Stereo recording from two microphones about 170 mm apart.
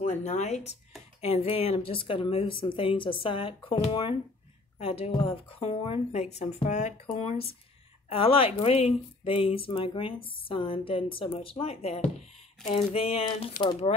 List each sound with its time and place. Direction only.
0.0 s speech: 45° left (ahead or behind)